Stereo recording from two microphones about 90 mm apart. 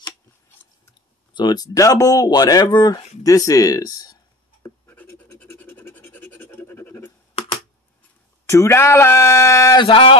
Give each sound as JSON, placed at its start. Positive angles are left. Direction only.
{"t": 1.3, "sound": "speech", "side_deg": 50}
{"t": 4.6, "sound": "writing", "side_deg": 30}
{"t": 5.4, "sound": "scratch", "side_deg": 25}
{"t": 8.5, "sound": "speech", "side_deg": 30}
{"t": 9.8, "sound": "speech", "side_deg": 80}